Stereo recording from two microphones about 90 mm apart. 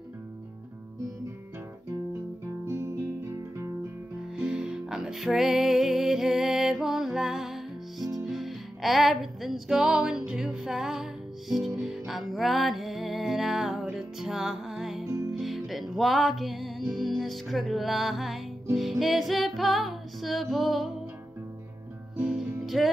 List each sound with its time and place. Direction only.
4.4 s music: 10° right (ahead or behind)
22.2 s music: 5° right (ahead or behind)